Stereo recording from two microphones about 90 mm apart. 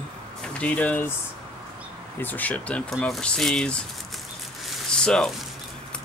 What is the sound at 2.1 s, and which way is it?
Speech, 20° left (ahead or behind).